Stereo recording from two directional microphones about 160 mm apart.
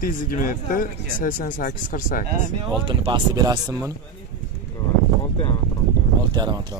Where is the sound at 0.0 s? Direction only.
60° left (ahead or behind).